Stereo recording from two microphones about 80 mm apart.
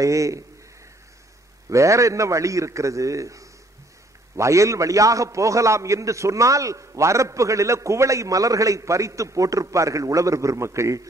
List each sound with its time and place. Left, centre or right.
0.0 s a man's voice: right
1.7 s a man's voice: right